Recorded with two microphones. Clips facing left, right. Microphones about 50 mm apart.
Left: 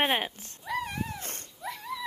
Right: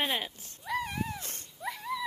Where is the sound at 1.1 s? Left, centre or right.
Left.